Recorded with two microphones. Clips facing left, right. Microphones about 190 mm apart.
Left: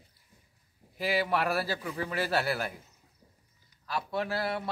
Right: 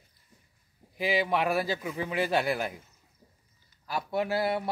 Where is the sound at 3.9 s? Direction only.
25° right (ahead or behind).